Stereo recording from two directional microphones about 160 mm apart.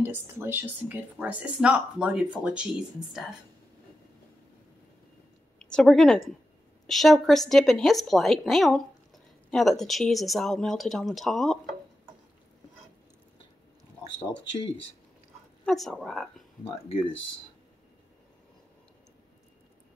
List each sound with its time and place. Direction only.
0.0 s speech: 15° right (ahead or behind)
5.6 s a woman's voice: 5° left (ahead or behind)
15.6 s a woman's voice: 5° left (ahead or behind)
16.6 s speech: 35° left (ahead or behind)